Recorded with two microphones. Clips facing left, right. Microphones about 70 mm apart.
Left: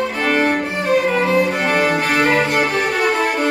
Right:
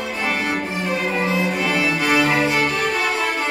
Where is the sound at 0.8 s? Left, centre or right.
Left.